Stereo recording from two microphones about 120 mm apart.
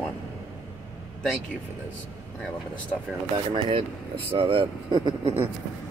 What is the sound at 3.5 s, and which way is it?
Speech, 50° right (ahead or behind).